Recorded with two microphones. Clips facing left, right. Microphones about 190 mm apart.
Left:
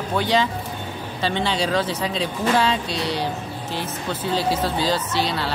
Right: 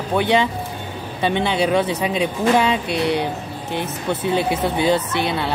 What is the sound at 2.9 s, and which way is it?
Speech, 60° right (ahead or behind).